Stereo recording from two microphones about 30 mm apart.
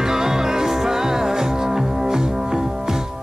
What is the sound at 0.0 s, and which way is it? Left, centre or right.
Music, centre.